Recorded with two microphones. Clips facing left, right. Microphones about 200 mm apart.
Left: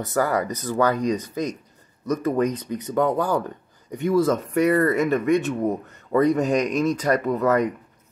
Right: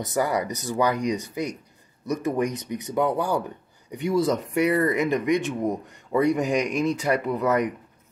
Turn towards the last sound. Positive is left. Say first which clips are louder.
# left 3 dB
turn(degrees=-15)  # may be behind; listen again after turning